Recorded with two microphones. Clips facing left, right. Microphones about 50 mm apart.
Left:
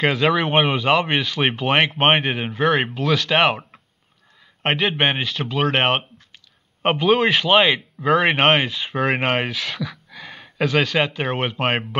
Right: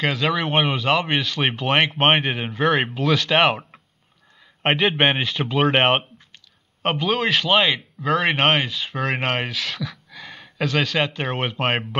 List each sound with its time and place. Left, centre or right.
0.0 s speech: centre
6.8 s a man's voice: centre